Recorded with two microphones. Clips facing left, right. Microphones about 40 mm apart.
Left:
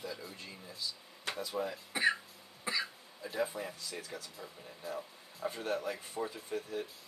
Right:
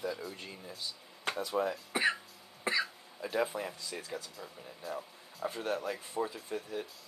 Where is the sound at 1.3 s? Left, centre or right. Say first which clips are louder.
Right 4 dB; right.